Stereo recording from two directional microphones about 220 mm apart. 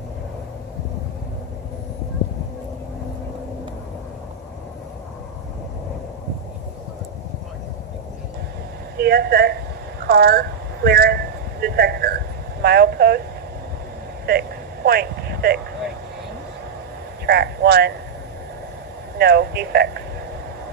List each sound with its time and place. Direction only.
8.9 s a woman's voice: 45° right (ahead or behind)
10.0 s a sound: 45° right (ahead or behind)
12.6 s speech: 45° right (ahead or behind)
14.2 s a sound: 45° right (ahead or behind)
17.3 s speech: 45° right (ahead or behind)
19.1 s speech: 45° right (ahead or behind)